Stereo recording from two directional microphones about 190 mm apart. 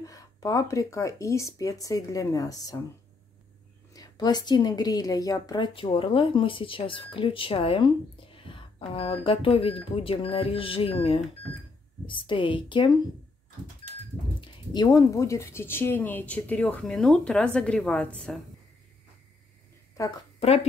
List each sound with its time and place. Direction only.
0.0 s speech: 20° left (ahead or behind)
3.9 s speech: 20° left (ahead or behind)
14.7 s speech: 20° left (ahead or behind); by 18.4 s 5° left (ahead or behind)
20.3 s speech: 30° left (ahead or behind)